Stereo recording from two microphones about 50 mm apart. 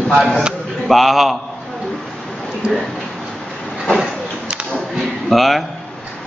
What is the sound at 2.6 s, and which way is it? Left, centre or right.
Speech, centre.